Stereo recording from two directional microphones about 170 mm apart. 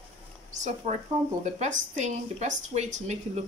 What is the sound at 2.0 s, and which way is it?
A woman's voice, 45° right (ahead or behind).